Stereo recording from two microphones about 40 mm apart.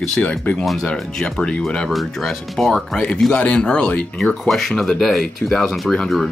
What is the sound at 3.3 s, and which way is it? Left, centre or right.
Speech, left.